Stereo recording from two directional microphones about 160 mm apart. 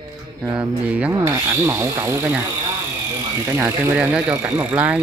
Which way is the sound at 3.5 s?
15° right (ahead or behind).